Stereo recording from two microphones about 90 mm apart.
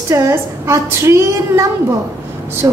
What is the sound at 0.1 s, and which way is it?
A woman's voice, 35° right (ahead or behind).